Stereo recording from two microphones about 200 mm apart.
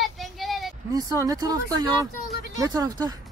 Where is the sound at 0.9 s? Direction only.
20° right (ahead or behind).